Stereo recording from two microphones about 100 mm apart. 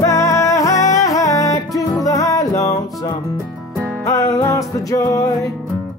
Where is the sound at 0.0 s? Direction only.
30° left (ahead or behind).